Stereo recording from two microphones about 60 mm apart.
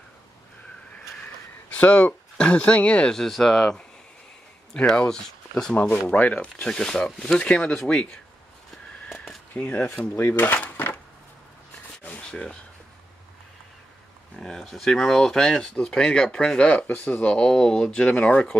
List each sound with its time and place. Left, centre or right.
1.7 s speech: left
3.1 s speech: centre
5.8 s speech: left; by 7.3 s centre
7.3 s speech: centre
9.1 s a sound: centre
9.6 s speech: left
10.1 s cutlery: left
12.2 s a sound: centre
14.3 s speech: centre
16.8 s speech: left
17.3 s speech: centre
18.1 s speech: left